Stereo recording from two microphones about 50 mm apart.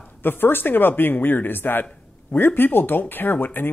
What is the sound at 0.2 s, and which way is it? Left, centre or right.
Speech, left.